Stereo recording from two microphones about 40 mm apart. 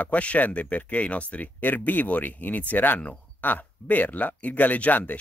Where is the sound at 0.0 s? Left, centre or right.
Left.